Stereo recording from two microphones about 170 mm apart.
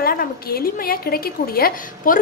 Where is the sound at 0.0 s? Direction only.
60° left (ahead or behind).